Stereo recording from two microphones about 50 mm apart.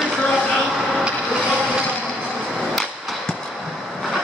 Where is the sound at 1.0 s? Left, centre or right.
Centre.